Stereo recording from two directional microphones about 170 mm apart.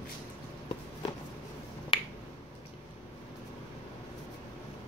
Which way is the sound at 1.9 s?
30° left (ahead or behind).